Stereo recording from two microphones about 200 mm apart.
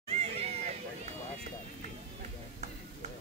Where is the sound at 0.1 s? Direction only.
30° right (ahead or behind).